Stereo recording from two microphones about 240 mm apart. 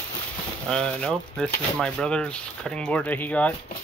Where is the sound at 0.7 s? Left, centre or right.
Centre.